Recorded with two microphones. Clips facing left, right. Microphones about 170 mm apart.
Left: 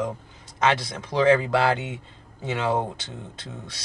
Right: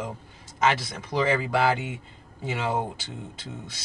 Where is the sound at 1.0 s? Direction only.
5° right (ahead or behind).